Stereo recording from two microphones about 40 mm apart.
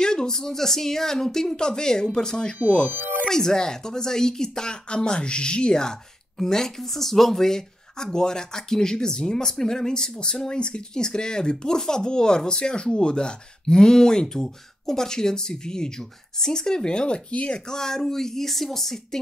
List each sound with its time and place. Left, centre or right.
0.0 s speech: centre
2.9 s speech: right
3.3 s speech: centre
17.3 s speech: left
17.6 s speech: centre